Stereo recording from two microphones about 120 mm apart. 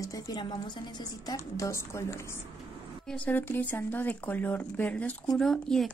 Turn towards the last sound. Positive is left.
turn(degrees=5)  # may be behind; listen again after turning